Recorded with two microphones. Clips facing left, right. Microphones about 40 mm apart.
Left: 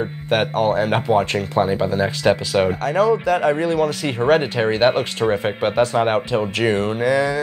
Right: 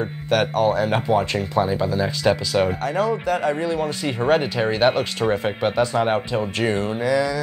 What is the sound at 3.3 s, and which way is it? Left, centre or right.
Speech, left.